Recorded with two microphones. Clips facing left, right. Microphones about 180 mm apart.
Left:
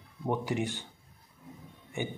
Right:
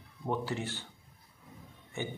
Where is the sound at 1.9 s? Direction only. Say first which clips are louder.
Left 3 dB; 15° left (ahead or behind).